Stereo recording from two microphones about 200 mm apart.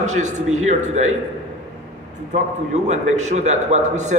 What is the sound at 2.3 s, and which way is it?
A man's voice, 35° right (ahead or behind).